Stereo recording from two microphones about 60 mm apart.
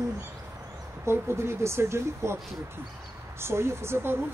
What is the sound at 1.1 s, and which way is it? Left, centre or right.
Speech, right.